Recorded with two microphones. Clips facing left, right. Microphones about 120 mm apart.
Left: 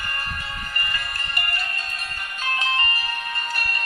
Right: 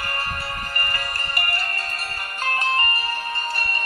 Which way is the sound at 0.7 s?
45° right (ahead or behind).